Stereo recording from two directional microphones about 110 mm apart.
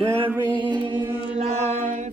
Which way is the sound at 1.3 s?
90° right.